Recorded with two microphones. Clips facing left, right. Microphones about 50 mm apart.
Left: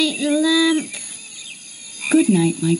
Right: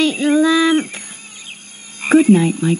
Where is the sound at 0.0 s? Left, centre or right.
Right.